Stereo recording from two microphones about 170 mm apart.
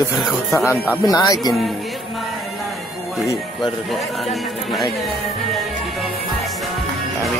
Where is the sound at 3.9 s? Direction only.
Centre (ahead or behind).